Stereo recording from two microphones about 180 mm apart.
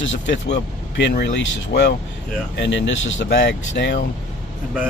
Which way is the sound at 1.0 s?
75° left (ahead or behind).